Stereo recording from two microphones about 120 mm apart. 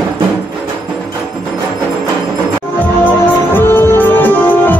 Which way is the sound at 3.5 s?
15° left (ahead or behind).